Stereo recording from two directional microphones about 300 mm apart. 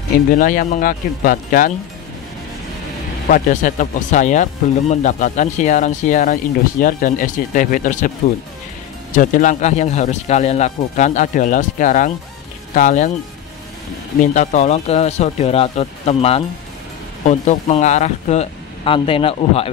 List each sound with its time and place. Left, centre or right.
0.3 s speech: left
3.3 s speech: left
9.1 s speech: left
14.2 s speech: left